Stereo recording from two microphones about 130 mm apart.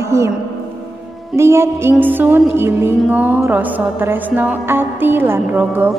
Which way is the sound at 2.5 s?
15° right (ahead or behind).